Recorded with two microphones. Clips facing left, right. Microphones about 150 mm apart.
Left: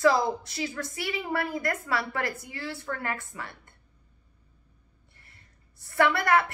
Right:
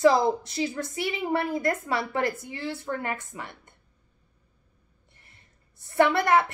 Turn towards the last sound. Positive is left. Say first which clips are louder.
# right 2 dB
turn(degrees=-20)  # may be behind; listen again after turning